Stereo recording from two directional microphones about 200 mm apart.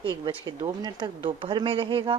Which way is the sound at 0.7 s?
20° right (ahead or behind).